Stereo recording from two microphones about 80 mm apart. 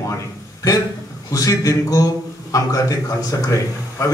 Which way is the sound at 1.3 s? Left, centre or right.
Left.